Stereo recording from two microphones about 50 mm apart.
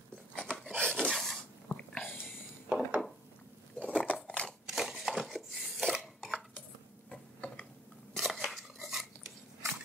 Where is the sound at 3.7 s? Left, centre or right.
Centre.